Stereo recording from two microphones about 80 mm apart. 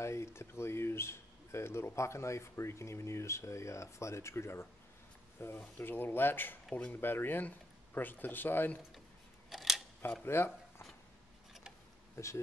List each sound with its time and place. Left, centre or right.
0.0 s speech: left
6.7 s speech: centre
7.0 s speech: left
9.5 s camera: centre
10.2 s speech: left
12.2 s speech: left